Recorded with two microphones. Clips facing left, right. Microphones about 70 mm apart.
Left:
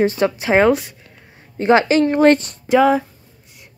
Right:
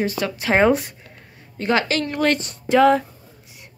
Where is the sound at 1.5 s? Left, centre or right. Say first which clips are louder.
Left 7 dB; left.